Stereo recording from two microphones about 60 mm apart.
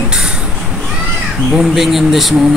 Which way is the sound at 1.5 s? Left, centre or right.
Centre.